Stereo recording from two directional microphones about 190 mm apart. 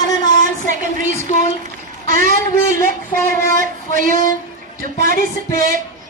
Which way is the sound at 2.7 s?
15° left (ahead or behind).